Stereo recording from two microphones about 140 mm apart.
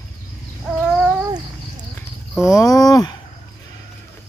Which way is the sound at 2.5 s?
25° left (ahead or behind).